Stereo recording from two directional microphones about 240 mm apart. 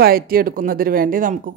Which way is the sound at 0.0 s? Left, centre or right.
Right.